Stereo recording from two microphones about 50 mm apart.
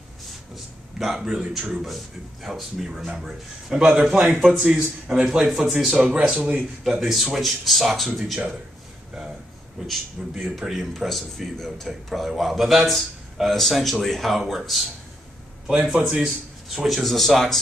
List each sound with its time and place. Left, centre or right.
0.9 s a man's voice: centre
3.9 s a man's voice: right
4.6 s a man's voice: right
6.1 s speech: right
6.8 s a man's voice: centre
9.8 s a man's voice: centre
10.7 s a man's voice: centre
16.7 s a man's voice: centre